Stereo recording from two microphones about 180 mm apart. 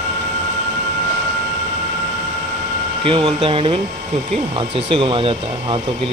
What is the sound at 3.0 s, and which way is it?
Speech, 30° right (ahead or behind).